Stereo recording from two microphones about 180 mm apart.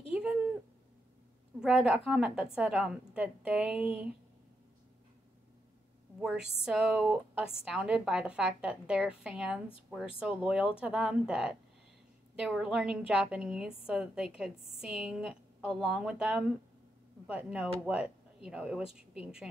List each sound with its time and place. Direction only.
0.1 s a sound: 5° right (ahead or behind)
1.6 s a woman's voice: 5° right (ahead or behind)
6.2 s a woman's voice: 5° right (ahead or behind)